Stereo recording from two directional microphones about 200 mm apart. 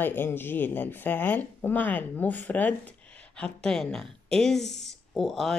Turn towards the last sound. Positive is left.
turn(degrees=0)  # may be behind; listen again after turning